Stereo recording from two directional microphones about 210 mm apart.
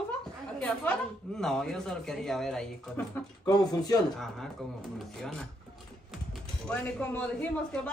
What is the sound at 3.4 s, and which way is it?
Speech, 15° left (ahead or behind).